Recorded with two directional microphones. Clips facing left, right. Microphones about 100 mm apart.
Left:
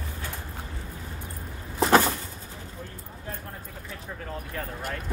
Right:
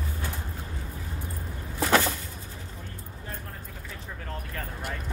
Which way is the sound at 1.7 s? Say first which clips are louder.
Left 4 dB; 25° left (ahead or behind).